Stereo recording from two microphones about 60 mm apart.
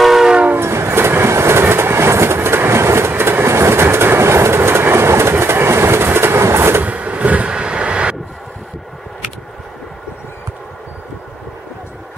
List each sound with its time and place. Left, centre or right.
0.0 s train: centre
0.6 s train: right
6.8 s vehicle: right